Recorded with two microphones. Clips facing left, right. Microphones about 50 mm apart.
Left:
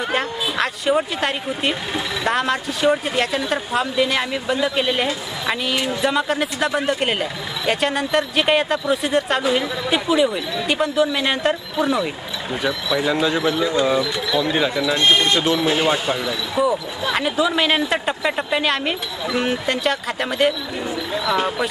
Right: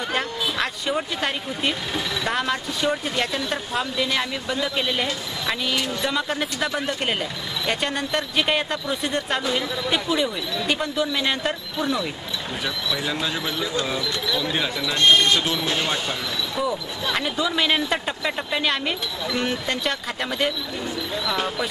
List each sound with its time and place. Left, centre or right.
0.1 s speech: centre
6.9 s speech: centre
12.6 s speech: left; by 20.5 s centre
21.1 s speech: centre